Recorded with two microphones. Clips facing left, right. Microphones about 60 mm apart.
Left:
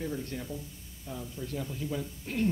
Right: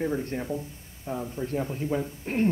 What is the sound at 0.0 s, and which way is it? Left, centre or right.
A man's voice, right.